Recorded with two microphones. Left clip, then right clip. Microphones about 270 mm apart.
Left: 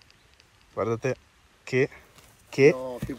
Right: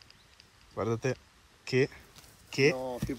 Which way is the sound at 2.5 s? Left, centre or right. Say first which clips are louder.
Left 7 dB; centre.